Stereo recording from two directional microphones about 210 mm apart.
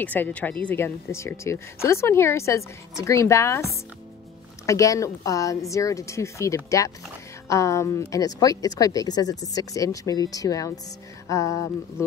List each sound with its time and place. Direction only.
0.0 s speech: 10° left (ahead or behind)
4.6 s speech: 15° left (ahead or behind)